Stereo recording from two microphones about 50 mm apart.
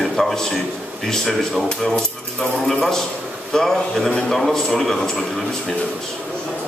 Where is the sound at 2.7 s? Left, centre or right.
Centre.